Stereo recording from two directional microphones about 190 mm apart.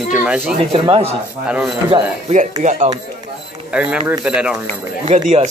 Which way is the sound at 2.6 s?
40° right (ahead or behind).